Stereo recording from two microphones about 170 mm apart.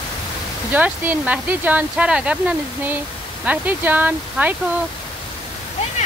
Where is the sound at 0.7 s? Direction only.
10° right (ahead or behind).